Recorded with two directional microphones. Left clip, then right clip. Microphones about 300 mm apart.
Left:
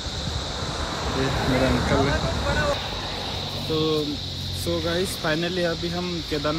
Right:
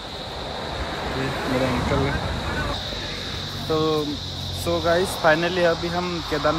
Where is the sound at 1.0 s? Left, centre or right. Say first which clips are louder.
Left 2 dB; right.